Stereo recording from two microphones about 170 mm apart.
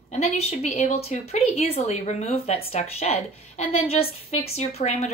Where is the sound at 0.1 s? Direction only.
40° left (ahead or behind).